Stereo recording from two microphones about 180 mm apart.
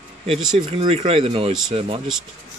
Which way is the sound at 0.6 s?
30° right (ahead or behind).